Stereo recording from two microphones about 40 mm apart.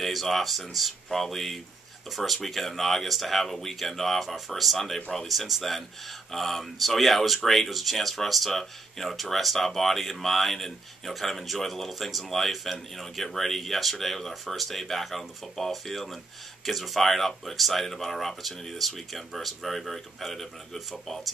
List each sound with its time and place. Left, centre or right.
0.0 s speech: centre